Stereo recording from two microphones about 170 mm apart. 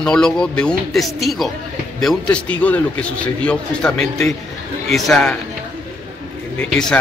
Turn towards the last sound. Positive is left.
turn(degrees=5)  # may be behind; listen again after turning